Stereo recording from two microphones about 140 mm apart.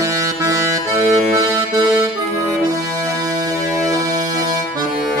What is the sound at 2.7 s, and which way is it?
Music, 25° right (ahead or behind).